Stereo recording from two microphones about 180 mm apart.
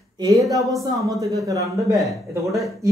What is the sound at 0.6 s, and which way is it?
Speech, centre (ahead or behind).